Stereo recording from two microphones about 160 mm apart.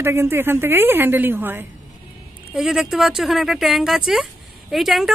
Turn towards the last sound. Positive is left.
turn(degrees=0)  # may be behind; listen again after turning